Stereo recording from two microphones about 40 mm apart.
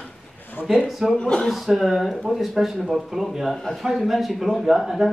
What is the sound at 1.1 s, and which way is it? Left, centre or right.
Speech, left.